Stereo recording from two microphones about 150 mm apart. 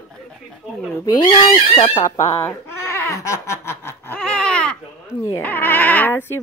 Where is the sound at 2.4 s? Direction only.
15° left (ahead or behind).